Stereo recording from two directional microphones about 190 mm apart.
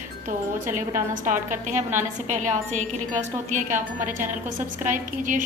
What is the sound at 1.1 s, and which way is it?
A woman's voice, 45° right (ahead or behind).